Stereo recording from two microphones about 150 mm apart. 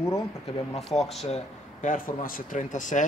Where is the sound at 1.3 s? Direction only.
55° left (ahead or behind).